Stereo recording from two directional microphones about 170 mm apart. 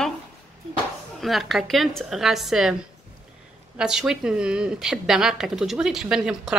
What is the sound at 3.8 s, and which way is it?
Speech, 5° right (ahead or behind).